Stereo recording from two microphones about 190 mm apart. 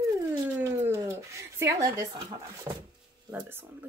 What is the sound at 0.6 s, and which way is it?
Speech, 15° right (ahead or behind).